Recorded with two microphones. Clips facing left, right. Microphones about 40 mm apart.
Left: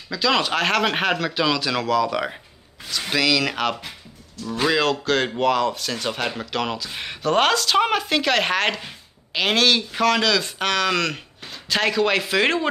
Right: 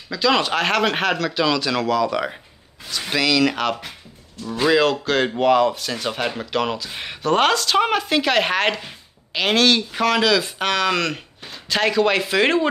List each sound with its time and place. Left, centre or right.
0.1 s speech: centre